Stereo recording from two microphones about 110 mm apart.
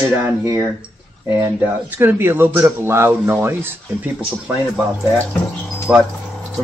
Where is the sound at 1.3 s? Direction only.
25° right (ahead or behind).